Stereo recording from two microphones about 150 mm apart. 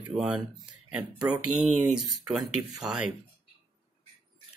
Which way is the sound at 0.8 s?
10° right (ahead or behind).